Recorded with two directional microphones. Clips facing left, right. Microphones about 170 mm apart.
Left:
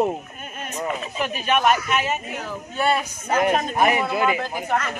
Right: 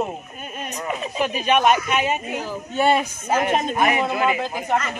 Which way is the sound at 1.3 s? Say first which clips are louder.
Right 2 dB; 15° right (ahead or behind).